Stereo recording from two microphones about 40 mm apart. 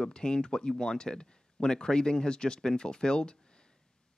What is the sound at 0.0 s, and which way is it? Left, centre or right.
Speech, centre.